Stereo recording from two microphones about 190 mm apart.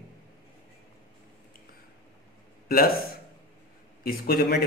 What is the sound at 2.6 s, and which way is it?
Speech, 50° left (ahead or behind).